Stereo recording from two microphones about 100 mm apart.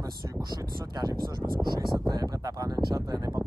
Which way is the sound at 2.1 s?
40° right (ahead or behind).